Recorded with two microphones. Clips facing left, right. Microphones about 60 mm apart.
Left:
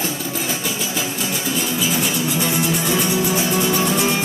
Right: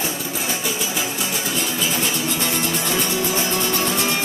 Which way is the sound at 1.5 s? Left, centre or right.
Centre.